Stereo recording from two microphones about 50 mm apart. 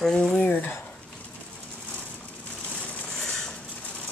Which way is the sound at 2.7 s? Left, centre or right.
Left.